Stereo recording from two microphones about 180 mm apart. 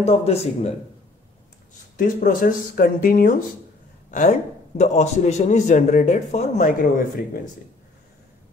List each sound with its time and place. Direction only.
0.0 s speech: 35° left (ahead or behind)
2.0 s a man's voice: 50° left (ahead or behind)
4.1 s a man's voice: 45° left (ahead or behind)